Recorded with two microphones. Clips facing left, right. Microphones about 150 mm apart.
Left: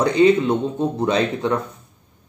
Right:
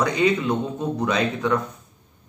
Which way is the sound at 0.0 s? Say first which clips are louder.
Left 6 dB; 30° left (ahead or behind).